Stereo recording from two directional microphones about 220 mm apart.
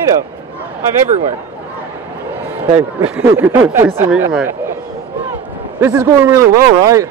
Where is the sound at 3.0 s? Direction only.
5° right (ahead or behind).